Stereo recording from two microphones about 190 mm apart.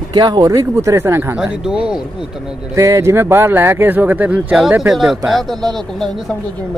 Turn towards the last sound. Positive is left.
turn(degrees=0)  # may be behind; listen again after turning